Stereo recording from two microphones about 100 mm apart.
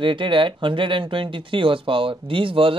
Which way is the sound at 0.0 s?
55° right (ahead or behind).